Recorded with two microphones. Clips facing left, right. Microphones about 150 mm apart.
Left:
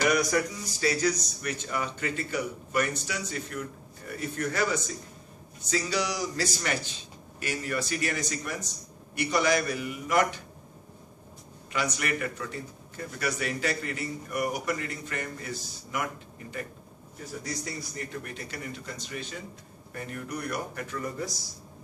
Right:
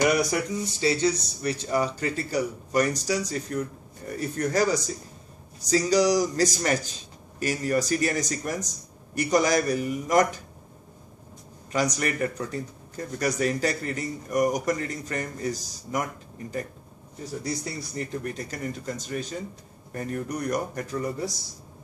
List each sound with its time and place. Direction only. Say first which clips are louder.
0.0 s speech: right 2 dB; 25° right (ahead or behind); by 10.4 s 40° right (ahead or behind)
11.7 s speech: right 4 dB; 40° right (ahead or behind)
17.9 s speech: right 6 dB; 40° right (ahead or behind)